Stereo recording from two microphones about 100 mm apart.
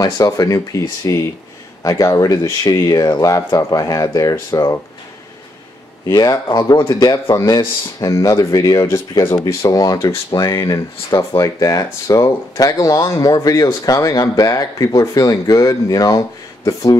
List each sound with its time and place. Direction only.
0.0 s speech: 40° left (ahead or behind)
6.1 s speech: 40° left (ahead or behind)